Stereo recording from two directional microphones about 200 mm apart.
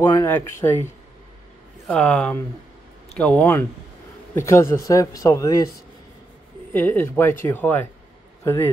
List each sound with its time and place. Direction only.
0.0 s speech: 10° left (ahead or behind)
1.9 s speech: 5° left (ahead or behind)
6.7 s speech: 10° left (ahead or behind)